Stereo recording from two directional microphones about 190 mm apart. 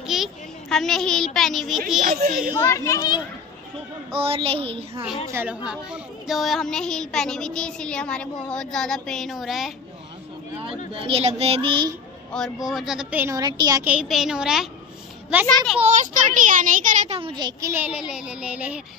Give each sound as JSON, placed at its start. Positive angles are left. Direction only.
{"t": 0.0, "sound": "a sound", "side_deg": 0}
{"t": 2.6, "sound": "a child's voice", "side_deg": 15}
{"t": 4.1, "sound": "a child's voice", "side_deg": -30}
{"t": 5.3, "sound": "a child's voice", "side_deg": -10}
{"t": 10.9, "sound": "a child's voice", "side_deg": -30}
{"t": 12.3, "sound": "a child's voice", "side_deg": 0}
{"t": 13.8, "sound": "a woman's voice", "side_deg": -5}
{"t": 15.8, "sound": "a child's voice", "side_deg": -40}